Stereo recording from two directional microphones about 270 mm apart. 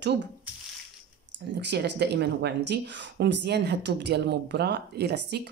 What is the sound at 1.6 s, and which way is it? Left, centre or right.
Speech, right.